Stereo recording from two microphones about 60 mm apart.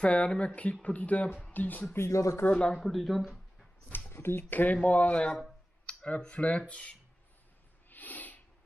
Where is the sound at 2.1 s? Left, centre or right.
Left.